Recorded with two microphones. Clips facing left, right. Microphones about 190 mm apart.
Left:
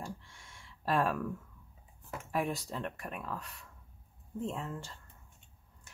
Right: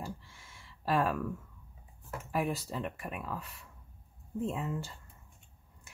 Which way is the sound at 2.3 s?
Centre (ahead or behind).